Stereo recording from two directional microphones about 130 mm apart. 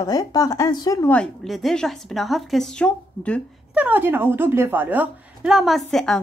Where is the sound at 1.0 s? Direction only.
10° left (ahead or behind).